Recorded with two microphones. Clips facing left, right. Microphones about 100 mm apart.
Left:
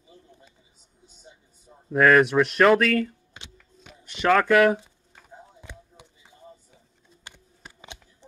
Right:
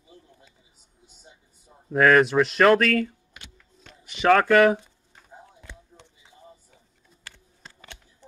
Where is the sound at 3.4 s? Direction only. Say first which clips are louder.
Left 1 dB; 25° left (ahead or behind).